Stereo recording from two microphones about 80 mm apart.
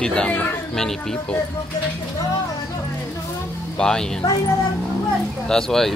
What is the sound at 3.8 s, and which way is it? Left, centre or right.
Speech, centre.